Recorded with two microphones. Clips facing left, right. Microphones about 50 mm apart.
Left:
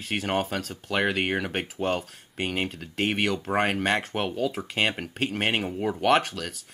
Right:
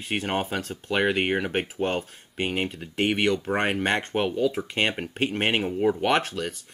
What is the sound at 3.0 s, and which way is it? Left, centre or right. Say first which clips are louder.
Speech: right 3 dB; centre.